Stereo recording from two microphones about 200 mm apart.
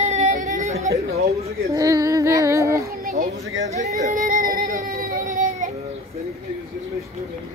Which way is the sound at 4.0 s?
40° right (ahead or behind).